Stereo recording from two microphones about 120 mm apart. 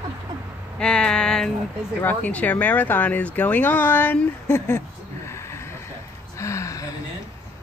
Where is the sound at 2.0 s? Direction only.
15° left (ahead or behind).